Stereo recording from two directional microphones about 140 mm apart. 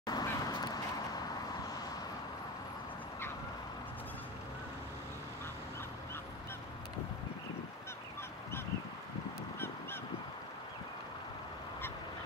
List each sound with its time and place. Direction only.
0.0 s vehicle: 30° left (ahead or behind)